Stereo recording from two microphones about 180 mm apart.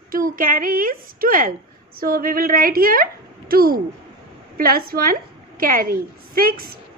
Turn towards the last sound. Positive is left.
turn(degrees=-55)  # may be behind; listen again after turning